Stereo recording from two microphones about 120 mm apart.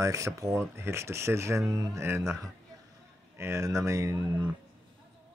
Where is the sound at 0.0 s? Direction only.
25° right (ahead or behind).